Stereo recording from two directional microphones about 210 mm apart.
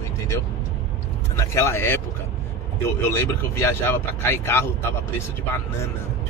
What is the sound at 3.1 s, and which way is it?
Speech, 10° left (ahead or behind).